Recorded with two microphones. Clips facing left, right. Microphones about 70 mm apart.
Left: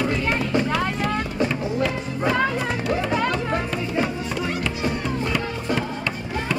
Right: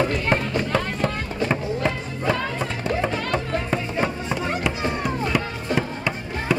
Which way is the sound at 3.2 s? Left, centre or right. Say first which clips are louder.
Even; right.